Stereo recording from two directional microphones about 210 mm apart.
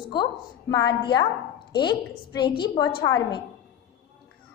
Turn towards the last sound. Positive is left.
turn(degrees=20)  # may be behind; listen again after turning